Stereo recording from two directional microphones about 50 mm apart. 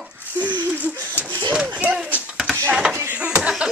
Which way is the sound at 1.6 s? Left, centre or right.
Right.